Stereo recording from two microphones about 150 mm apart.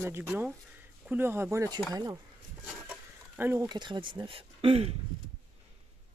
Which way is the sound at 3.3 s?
15° right (ahead or behind).